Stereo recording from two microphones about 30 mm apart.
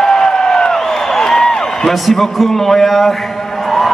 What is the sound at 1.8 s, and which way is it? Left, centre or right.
A man's voice, centre.